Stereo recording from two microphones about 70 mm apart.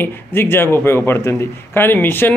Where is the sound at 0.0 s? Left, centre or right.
Left.